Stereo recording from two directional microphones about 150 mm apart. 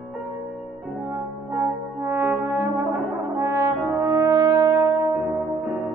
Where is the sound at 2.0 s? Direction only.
15° right (ahead or behind).